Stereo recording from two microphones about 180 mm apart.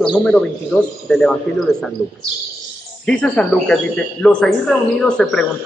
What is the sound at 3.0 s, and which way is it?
A man's voice, 5° left (ahead or behind).